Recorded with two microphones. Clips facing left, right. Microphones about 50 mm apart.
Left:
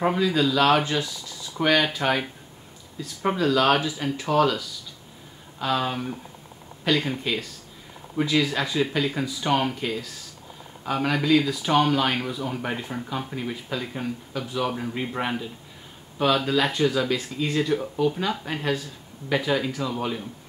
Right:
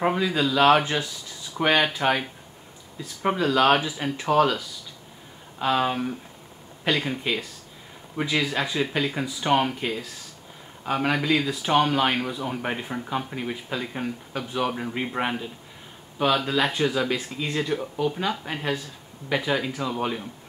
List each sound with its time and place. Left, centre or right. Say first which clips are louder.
0.0 s speech: left 1 dB; centre
3.0 s speech: even; right